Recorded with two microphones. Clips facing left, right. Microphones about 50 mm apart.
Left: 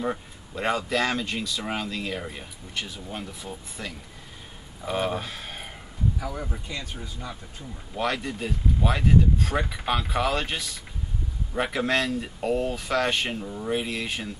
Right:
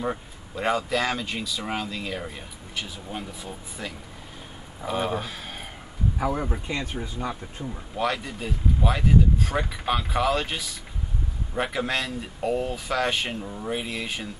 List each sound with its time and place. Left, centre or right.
0.0 s speech: centre
6.1 s speech: right
7.9 s speech: centre